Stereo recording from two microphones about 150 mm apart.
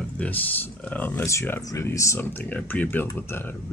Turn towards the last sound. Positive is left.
turn(degrees=15)  # may be behind; listen again after turning